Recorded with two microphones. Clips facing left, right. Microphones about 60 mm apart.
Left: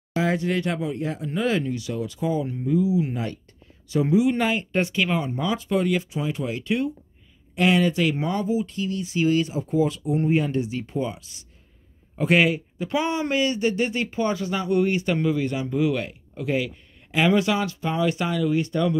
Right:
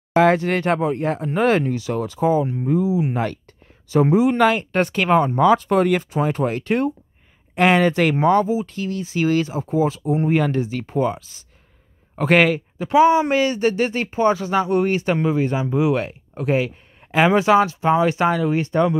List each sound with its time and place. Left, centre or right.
0.2 s speech: right
2.0 s speech: right
3.1 s speech: right
3.9 s speech: right
4.4 s speech: right
6.0 s speech: right
7.5 s speech: right
7.9 s speech: right
9.0 s speech: right
10.6 s speech: right
12.2 s a man's voice: right
12.9 s speech: right
13.3 s speech: right